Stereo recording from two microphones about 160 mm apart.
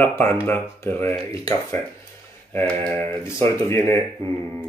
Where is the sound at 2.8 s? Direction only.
10° left (ahead or behind).